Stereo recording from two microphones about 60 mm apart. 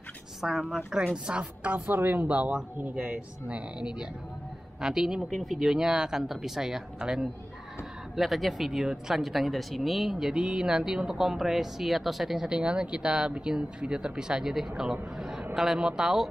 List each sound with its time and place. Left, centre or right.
0.4 s a woman's voice: centre
12.4 s speech: centre